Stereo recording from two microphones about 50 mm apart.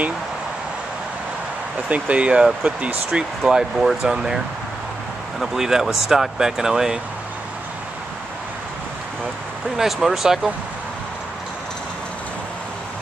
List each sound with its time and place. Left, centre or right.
1.9 s speech: right
3.1 s speech: centre
5.4 s speech: centre
9.8 s speech: centre